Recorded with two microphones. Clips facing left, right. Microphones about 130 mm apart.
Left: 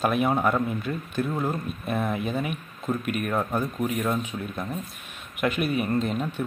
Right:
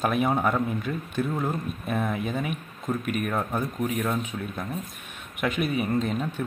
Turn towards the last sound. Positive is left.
turn(degrees=0)  # may be behind; listen again after turning